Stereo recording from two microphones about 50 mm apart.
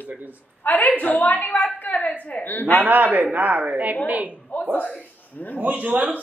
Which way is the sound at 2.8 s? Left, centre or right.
Right.